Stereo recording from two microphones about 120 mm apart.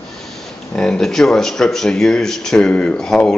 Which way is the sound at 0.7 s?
5° left (ahead or behind).